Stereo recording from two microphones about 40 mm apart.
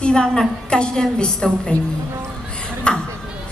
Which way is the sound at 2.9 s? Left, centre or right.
Left.